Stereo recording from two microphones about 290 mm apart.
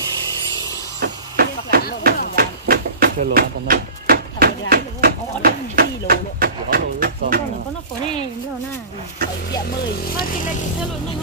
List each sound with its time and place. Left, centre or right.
1.0 s a sound: right
2.3 s speech: right
10.0 s speech: left